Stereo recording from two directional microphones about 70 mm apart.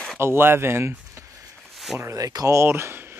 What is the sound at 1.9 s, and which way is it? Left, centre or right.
Speech, right.